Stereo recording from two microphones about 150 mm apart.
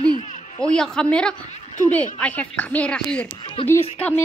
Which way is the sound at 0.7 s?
5° left (ahead or behind).